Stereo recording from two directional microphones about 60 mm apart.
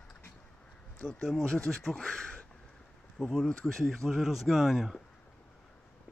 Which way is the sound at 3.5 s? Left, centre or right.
Centre.